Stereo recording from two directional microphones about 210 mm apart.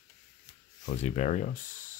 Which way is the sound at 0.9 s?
30° left (ahead or behind).